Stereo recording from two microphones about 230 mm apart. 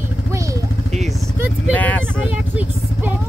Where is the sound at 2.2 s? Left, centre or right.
Centre.